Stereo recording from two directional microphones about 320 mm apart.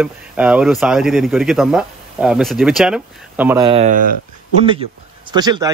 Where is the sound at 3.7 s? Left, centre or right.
Right.